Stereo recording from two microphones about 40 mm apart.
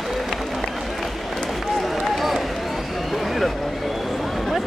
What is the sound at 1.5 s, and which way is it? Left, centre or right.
Run, centre.